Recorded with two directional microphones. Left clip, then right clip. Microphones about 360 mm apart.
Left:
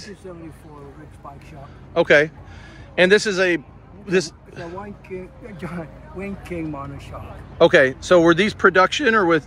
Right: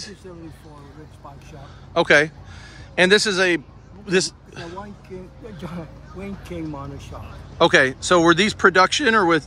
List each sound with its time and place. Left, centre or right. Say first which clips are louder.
2.0 s a man's voice: left 1 dB; centre